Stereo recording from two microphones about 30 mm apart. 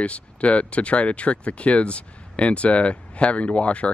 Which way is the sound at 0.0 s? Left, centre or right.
Left.